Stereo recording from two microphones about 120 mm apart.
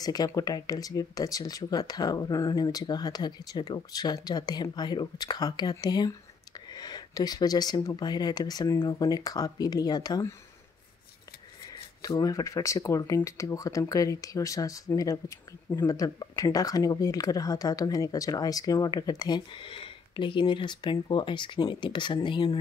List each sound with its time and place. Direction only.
0.0 s speech: 35° left (ahead or behind)
12.2 s speech: 30° left (ahead or behind)